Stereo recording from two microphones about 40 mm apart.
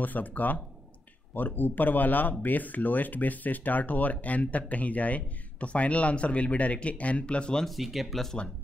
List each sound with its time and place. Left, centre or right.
0.0 s speech: left
7.6 s speech: centre